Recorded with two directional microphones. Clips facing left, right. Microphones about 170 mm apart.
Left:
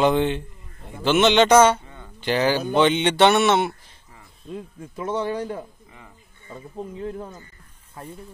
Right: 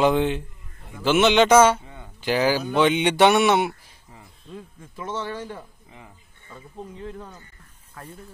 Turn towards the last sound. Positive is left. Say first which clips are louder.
# left 5 dB
turn(degrees=35)  # may be behind; listen again after turning